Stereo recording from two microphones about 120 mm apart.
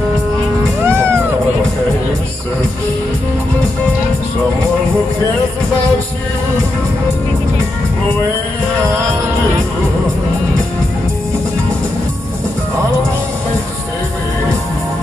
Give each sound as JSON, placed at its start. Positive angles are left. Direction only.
{"t": 0.8, "sound": "music", "side_deg": -20}